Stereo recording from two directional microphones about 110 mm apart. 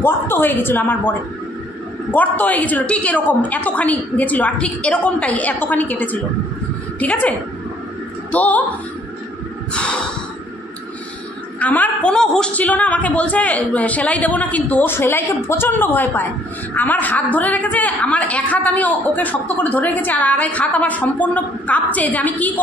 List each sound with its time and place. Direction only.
0.0 s a woman's voice: 20° left (ahead or behind)
11.6 s a woman's voice: 15° left (ahead or behind)